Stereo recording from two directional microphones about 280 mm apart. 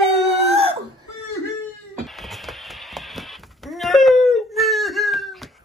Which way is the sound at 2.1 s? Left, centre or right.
Centre.